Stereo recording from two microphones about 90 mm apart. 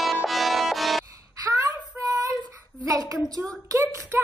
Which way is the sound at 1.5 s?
40° right (ahead or behind).